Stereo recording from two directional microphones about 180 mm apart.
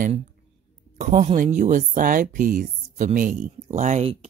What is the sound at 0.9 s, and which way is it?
Speech, 40° right (ahead or behind).